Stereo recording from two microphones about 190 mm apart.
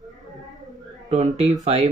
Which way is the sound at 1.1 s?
30° right (ahead or behind).